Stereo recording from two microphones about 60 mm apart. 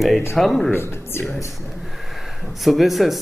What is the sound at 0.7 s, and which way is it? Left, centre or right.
Speech, left.